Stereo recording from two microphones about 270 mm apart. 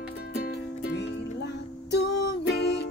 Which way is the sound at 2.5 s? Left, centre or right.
Left.